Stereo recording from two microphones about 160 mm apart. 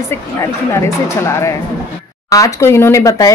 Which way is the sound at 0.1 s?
20° left (ahead or behind).